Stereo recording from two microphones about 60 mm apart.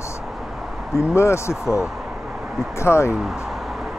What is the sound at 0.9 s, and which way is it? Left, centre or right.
Speech, left.